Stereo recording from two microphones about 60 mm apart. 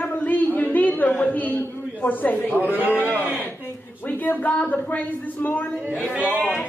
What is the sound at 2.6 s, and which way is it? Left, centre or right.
Speech, right.